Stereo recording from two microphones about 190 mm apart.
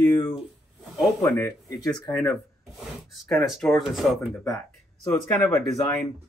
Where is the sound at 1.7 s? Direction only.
20° left (ahead or behind).